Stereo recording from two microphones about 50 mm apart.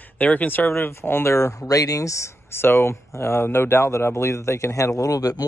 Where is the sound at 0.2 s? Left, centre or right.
Left.